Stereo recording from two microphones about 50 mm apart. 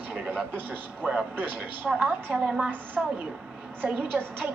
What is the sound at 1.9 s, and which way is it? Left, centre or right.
A woman's voice, centre.